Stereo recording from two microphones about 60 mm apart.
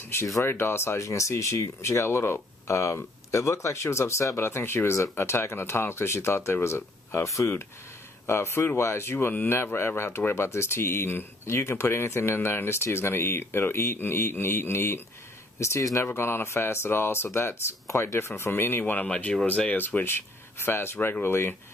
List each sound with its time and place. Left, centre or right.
0.5 s speech: left
1.0 s speech: left
2.7 s speech: left
8.3 s speech: left
9.3 s speech: left
9.6 s speech: left
15.6 s speech: left
16.1 s speech: left
19.0 s speech: centre; by 21.5 s left